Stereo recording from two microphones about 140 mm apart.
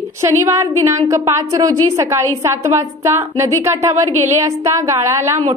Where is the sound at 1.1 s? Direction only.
25° right (ahead or behind).